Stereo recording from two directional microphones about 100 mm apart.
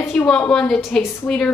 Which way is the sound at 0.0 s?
25° left (ahead or behind).